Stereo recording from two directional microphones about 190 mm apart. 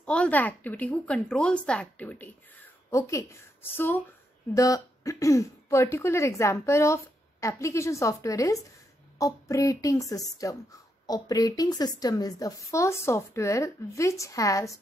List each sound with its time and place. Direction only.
0.0 s speech: 5° left (ahead or behind)